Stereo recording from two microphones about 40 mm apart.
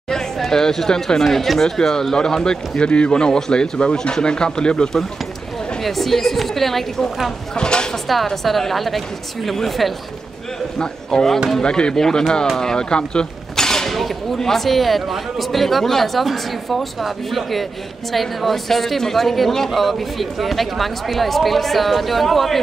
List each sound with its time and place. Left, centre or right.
0.5 s speech: centre
5.8 s speech: centre
7.5 s speech: left
7.9 s speech: centre
10.8 s a man's voice: centre
12.5 s a sound: centre
13.9 s speech: centre